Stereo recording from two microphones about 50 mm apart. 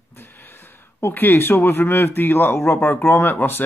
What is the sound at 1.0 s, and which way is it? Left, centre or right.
Speech, left.